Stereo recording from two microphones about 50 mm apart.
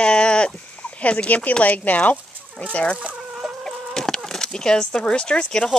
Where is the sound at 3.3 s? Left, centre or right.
Centre.